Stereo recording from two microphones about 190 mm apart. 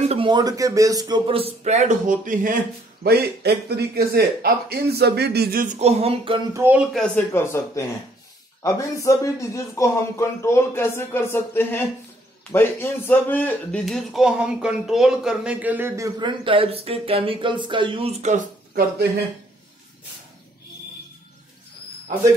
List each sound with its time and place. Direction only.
0.0 s speech: 30° right (ahead or behind)
3.0 s speech: 55° right (ahead or behind)
5.8 s speech: 35° right (ahead or behind)
6.5 s speech: 10° right (ahead or behind)
6.9 s speech: centre (ahead or behind)
7.3 s a man's voice: 15° left (ahead or behind); by 16.1 s 10° right (ahead or behind)
16.2 s speech: 25° right (ahead or behind)